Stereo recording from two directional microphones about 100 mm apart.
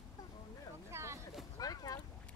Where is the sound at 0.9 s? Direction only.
30° right (ahead or behind).